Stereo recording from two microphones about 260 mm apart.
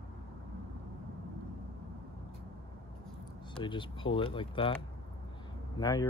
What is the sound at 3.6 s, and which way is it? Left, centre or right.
Speech, centre.